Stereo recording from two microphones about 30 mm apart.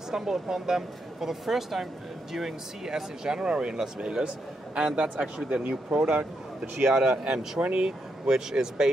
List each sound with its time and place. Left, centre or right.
0.1 s a man's voice: centre; by 5.2 s right
5.2 s speech: right
5.6 s speech: right
5.9 s speech: right
7.0 s speech: right